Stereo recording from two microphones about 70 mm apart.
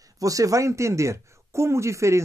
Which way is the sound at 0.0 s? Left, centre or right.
Right.